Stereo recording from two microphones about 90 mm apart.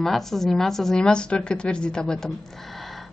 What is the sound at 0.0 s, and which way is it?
A woman's voice, 5° left (ahead or behind).